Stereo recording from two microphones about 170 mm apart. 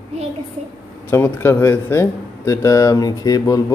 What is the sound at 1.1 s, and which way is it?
Speech, 15° left (ahead or behind).